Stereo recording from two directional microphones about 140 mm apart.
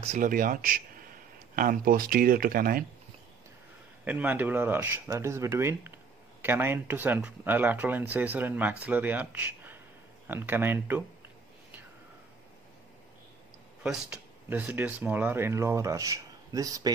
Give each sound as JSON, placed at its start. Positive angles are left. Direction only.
{"t": 0.2, "sound": "speech", "side_deg": -75}
{"t": 4.0, "sound": "speech", "side_deg": -10}
{"t": 13.8, "sound": "speech", "side_deg": -10}